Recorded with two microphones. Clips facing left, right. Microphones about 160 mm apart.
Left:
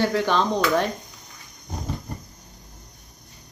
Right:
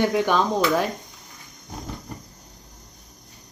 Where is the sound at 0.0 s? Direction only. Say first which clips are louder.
Right 1 dB; 15° right (ahead or behind).